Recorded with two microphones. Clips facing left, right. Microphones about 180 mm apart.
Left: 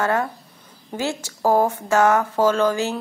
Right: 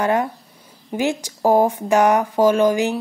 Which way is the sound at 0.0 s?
15° right (ahead or behind).